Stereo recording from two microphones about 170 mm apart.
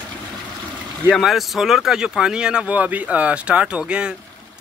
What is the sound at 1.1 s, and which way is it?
Speech, centre (ahead or behind).